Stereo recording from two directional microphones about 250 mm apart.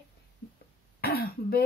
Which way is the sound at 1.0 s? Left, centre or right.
Left.